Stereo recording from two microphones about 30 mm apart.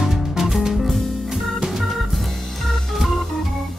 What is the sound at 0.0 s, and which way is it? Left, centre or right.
Music, centre.